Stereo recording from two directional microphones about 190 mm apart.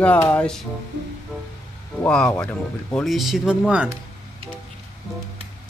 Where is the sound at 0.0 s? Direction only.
10° left (ahead or behind).